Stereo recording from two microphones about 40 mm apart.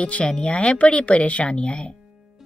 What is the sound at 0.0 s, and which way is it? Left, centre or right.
Speech, left.